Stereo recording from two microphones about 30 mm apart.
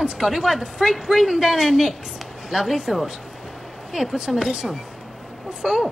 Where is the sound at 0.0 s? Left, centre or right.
Right.